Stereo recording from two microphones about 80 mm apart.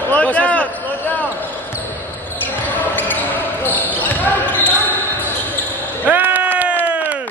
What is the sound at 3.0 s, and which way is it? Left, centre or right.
Basketball bounce, left.